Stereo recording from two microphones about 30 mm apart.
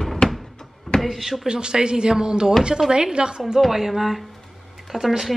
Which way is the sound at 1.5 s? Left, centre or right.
Right.